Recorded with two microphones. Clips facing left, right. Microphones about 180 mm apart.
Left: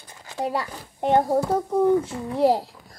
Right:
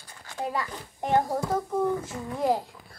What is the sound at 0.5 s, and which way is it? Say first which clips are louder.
A child's voice: left 4 dB; 30° left (ahead or behind).